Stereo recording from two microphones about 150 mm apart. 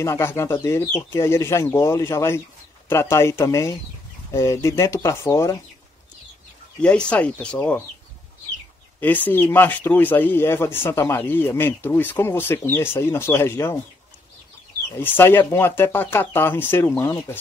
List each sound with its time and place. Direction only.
0.0 s speech: 20° left (ahead or behind)
6.8 s speech: 5° left (ahead or behind)
9.0 s speech: 10° left (ahead or behind)
15.0 s speech: 15° left (ahead or behind)